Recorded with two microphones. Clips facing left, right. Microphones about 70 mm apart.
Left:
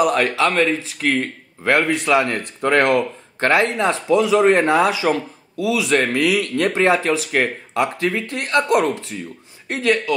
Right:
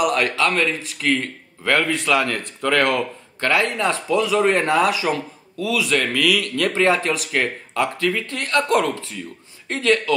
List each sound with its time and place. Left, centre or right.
0.0 s a man's voice: left